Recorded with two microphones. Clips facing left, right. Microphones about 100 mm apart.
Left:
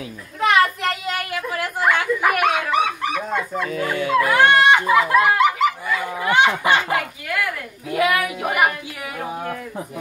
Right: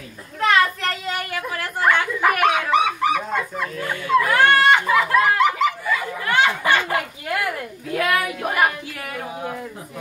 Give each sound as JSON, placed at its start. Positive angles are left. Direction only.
{"t": 0.4, "sound": "child singing", "side_deg": 15}
{"t": 1.3, "sound": "speech", "side_deg": 10}
{"t": 4.4, "sound": "children playing", "side_deg": 15}
{"t": 4.9, "sound": "speech", "side_deg": 5}
{"t": 6.2, "sound": "speech", "side_deg": 20}